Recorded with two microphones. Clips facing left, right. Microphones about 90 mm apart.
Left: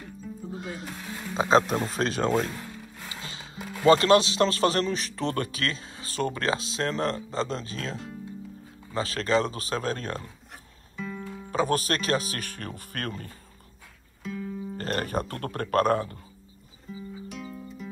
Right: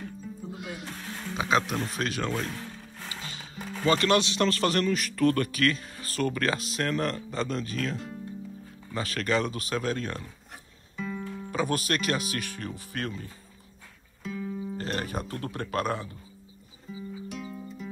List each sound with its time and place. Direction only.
0.0 s music: centre (ahead or behind)
0.6 s music: 35° left (ahead or behind)
0.8 s music: 5° left (ahead or behind)
1.3 s a man's voice: 30° left (ahead or behind)
2.5 s music: 15° left (ahead or behind)
3.2 s music: 30° left (ahead or behind)
3.5 s music: 10° left (ahead or behind)
3.8 s a man's voice: 35° left (ahead or behind)
10.5 s music: centre (ahead or behind)
11.5 s a man's voice: 35° left (ahead or behind)
14.2 s music: centre (ahead or behind)
14.8 s speech: 45° left (ahead or behind)
16.8 s music: centre (ahead or behind)